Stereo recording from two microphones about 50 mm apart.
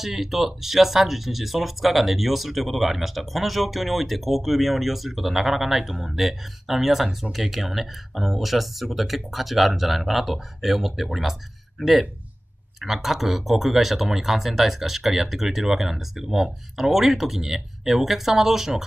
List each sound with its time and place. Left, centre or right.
0.0 s speech: centre